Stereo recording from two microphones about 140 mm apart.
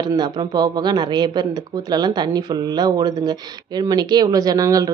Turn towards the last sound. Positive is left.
turn(degrees=-25)  # may be behind; listen again after turning